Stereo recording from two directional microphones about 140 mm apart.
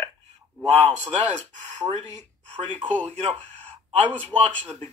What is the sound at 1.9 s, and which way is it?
Speech, 55° right (ahead or behind).